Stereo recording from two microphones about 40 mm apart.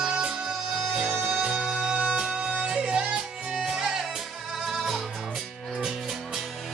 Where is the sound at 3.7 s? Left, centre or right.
Centre.